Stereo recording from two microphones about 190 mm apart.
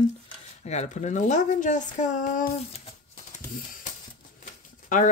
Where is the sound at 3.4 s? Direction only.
45° left (ahead or behind).